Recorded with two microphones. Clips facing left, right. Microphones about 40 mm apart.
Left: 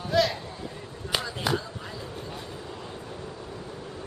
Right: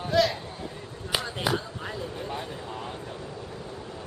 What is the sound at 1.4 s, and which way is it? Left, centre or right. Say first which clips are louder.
Basketball bounce: even; centre.